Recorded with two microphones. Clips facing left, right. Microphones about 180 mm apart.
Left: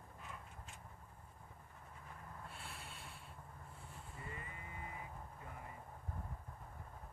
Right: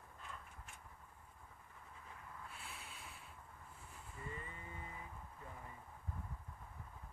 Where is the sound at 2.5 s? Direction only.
Centre (ahead or behind).